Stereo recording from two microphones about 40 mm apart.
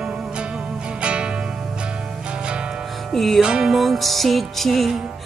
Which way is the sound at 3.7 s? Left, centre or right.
Centre.